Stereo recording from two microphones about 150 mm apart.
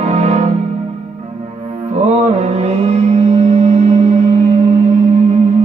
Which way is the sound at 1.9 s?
45° right (ahead or behind).